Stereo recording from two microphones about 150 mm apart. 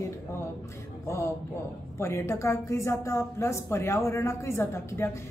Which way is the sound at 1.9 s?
15° left (ahead or behind).